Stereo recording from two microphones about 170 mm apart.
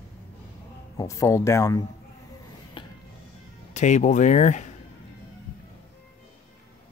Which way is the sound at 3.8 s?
45° left (ahead or behind).